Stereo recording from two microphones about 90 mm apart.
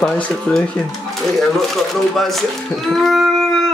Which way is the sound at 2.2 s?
Centre (ahead or behind).